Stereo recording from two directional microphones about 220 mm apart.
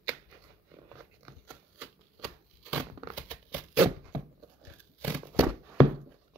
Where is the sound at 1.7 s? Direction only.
15° right (ahead or behind).